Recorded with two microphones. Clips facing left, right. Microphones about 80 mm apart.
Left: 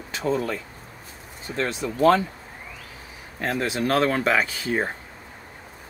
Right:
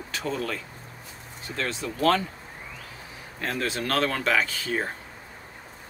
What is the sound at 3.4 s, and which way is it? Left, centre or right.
Speech, left.